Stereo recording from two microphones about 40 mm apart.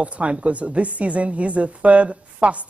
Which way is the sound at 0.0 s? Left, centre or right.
Right.